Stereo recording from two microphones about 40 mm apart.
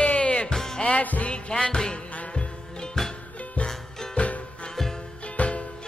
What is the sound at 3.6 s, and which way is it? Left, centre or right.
Music, left.